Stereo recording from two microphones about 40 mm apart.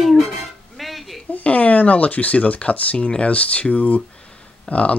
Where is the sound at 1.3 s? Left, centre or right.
Left.